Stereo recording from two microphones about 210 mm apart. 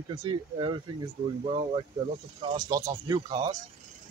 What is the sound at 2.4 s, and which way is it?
Speech, 20° right (ahead or behind).